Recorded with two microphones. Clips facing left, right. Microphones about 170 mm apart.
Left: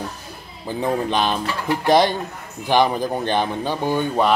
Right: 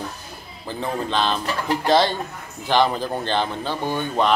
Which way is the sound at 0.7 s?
15° left (ahead or behind).